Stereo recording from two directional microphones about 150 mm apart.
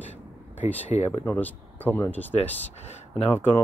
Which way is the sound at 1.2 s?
10° left (ahead or behind).